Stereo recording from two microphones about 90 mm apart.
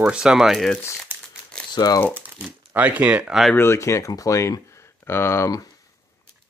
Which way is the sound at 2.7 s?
15° right (ahead or behind).